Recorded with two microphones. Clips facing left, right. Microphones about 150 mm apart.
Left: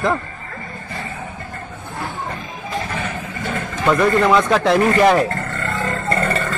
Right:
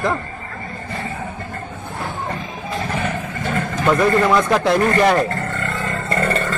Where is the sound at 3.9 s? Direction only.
5° right (ahead or behind).